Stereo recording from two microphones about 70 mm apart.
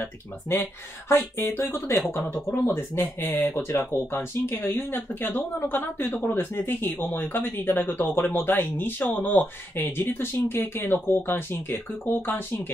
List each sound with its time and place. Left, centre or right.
0.5 s speech: left